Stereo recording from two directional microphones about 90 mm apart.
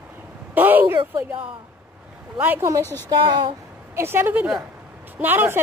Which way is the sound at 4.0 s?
25° right (ahead or behind).